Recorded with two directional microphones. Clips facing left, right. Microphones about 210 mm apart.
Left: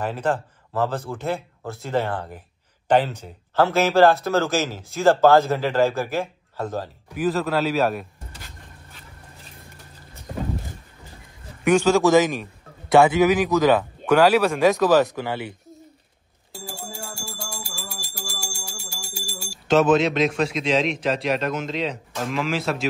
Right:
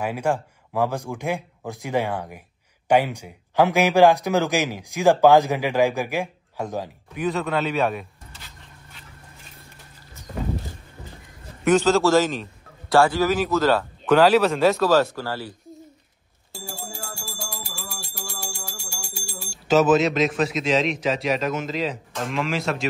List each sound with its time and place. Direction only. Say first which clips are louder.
0.0 s a man's voice: even; 10° right (ahead or behind)
7.2 s a man's voice: left 2 dB; centre (ahead or behind)
11.6 s speech: left 1 dB; 10° left (ahead or behind)
16.5 s bell: left 1 dB; centre (ahead or behind)